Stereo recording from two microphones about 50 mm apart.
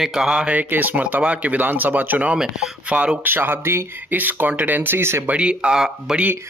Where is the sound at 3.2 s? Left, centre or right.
Right.